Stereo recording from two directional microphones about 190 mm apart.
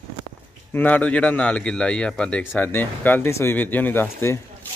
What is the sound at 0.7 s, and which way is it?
A man's voice, 10° left (ahead or behind).